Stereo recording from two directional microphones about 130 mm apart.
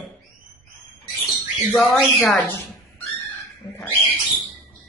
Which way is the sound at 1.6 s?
Centre (ahead or behind).